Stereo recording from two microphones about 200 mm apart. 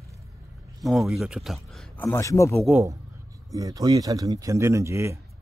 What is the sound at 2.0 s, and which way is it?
Speech, 15° left (ahead or behind).